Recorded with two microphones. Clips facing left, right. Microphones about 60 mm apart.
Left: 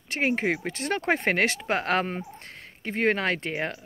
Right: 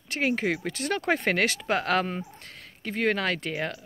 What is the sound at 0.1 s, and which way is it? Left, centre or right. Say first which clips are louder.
Speech: left 1 dB; left.